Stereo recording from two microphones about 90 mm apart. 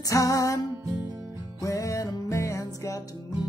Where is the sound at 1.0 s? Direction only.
35° right (ahead or behind).